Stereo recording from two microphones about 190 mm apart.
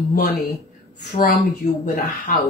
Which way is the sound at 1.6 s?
40° left (ahead or behind).